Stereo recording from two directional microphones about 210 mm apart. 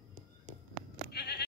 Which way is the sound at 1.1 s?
50° left (ahead or behind).